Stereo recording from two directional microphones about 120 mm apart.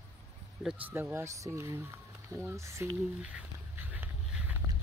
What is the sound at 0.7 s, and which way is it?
Speech, 15° right (ahead or behind).